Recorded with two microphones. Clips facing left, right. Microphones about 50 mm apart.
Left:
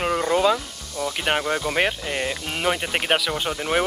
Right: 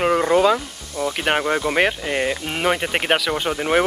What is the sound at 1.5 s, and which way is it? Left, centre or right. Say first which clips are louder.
Speech: right 3 dB; right.